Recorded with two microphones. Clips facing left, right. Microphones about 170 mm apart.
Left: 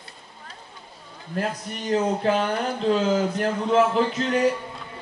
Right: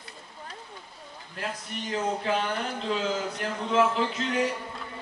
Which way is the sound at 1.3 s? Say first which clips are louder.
Left 7 dB; 45° left (ahead or behind).